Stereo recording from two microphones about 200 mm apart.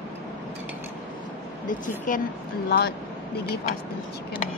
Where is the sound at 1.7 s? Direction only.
40° left (ahead or behind).